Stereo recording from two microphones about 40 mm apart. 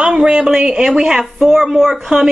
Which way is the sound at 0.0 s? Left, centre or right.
Right.